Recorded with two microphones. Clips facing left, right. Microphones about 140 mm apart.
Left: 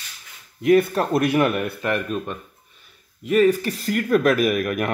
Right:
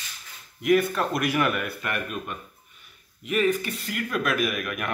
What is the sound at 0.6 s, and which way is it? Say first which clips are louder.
Speech: left 5 dB; 30° left (ahead or behind).